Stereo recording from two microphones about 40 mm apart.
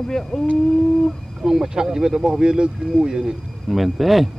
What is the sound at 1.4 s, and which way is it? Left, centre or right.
Speech, centre.